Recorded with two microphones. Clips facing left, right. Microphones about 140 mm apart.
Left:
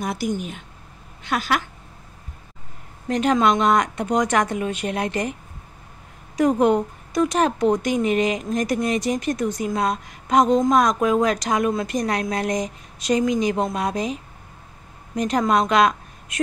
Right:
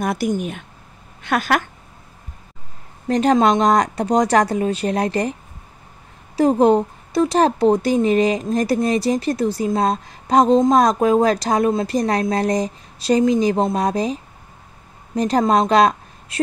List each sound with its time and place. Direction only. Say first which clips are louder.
0.0 s a woman's voice: right 4 dB; 55° right (ahead or behind)
3.1 s speech: right 3 dB; 35° right (ahead or behind)
6.3 s a woman's voice: right 3 dB; 30° right (ahead or behind)